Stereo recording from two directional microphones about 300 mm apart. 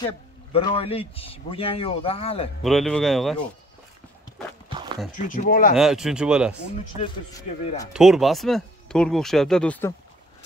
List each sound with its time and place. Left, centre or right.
0.0 s speech: centre
2.6 s speech: centre
4.6 s walk: centre
5.1 s speech: left
5.8 s speech: centre
7.9 s speech: centre